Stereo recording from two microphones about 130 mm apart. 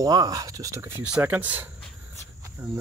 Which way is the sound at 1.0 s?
10° right (ahead or behind).